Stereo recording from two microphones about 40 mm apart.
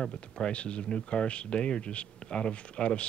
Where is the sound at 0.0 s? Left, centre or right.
Left.